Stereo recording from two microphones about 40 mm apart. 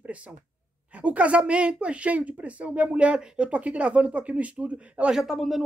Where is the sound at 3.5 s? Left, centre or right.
Right.